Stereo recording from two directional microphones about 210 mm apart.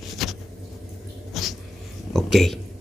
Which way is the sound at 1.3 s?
Centre (ahead or behind).